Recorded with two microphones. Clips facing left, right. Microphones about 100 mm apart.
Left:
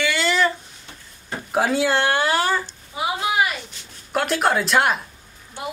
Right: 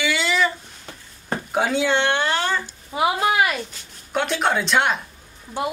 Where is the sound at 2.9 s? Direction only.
60° right (ahead or behind).